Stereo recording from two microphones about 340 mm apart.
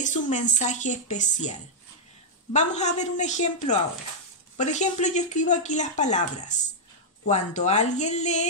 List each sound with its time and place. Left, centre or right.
0.0 s speech: left